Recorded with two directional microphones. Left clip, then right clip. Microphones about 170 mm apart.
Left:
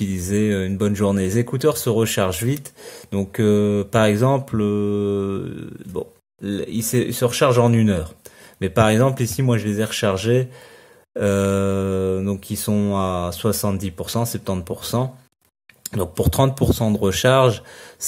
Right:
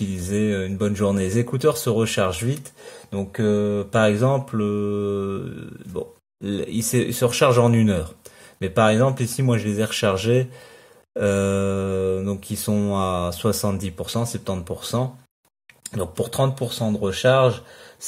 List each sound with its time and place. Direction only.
0.0 s speech: 20° left (ahead or behind)
5.9 s mantra: 10° left (ahead or behind)
8.5 s mantra: 25° left (ahead or behind)
15.8 s speech: 25° left (ahead or behind)